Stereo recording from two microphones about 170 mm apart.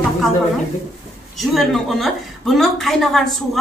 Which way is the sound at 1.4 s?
Centre (ahead or behind).